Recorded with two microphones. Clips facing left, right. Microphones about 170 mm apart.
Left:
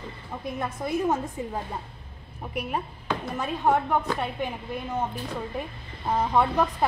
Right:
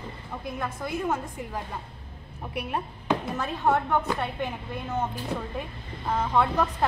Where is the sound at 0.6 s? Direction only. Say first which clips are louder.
Left 4 dB; 25° left (ahead or behind).